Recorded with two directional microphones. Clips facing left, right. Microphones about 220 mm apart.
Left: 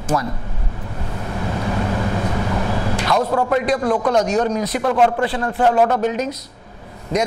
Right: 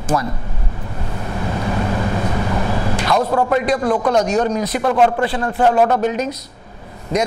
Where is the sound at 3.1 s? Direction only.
25° right (ahead or behind).